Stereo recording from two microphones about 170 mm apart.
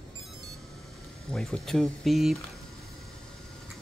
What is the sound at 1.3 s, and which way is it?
Speech, centre (ahead or behind).